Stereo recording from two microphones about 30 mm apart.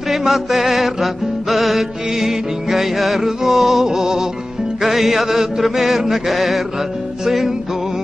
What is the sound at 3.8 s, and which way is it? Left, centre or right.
Music, centre.